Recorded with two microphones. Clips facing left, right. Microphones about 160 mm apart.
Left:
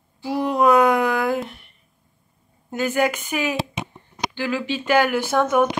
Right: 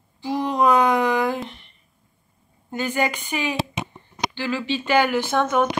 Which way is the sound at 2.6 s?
5° left (ahead or behind).